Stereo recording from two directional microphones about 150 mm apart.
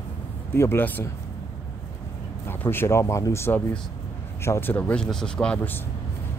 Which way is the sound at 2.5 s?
15° left (ahead or behind).